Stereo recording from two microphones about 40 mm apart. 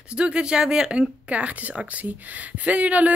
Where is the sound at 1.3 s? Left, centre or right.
Right.